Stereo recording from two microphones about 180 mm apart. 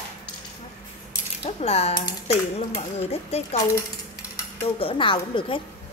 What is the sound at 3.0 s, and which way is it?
Speech, 35° left (ahead or behind).